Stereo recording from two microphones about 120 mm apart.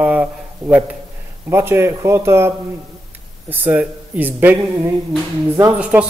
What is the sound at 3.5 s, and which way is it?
A man's voice, 15° right (ahead or behind).